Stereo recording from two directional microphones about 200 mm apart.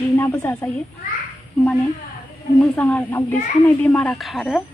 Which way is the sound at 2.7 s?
5° left (ahead or behind).